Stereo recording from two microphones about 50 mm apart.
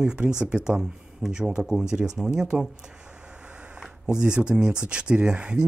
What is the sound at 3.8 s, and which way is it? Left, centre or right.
Speech, centre.